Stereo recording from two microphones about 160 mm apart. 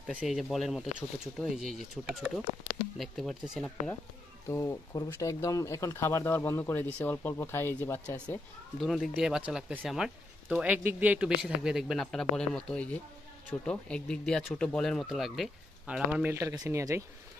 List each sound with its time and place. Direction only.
0.0 s speech: 5° right (ahead or behind)
4.5 s speech: 20° left (ahead or behind)
8.7 s speech: centre (ahead or behind); by 17.0 s 15° right (ahead or behind)